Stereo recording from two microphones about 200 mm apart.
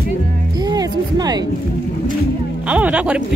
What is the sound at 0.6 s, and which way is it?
Speech, 20° right (ahead or behind).